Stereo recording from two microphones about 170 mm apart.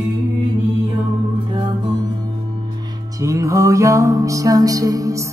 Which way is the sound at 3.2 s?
20° right (ahead or behind).